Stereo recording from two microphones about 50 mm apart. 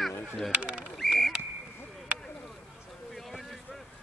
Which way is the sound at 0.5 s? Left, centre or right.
Right.